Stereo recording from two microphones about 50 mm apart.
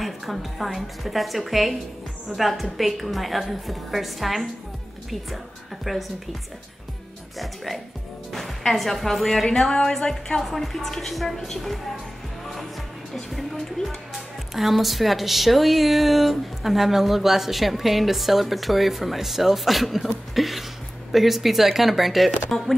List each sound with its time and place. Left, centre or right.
0.0 s speech: centre
5.9 s speech: centre
7.3 s speech: centre
9.5 s a woman's voice: centre
13.1 s speech: centre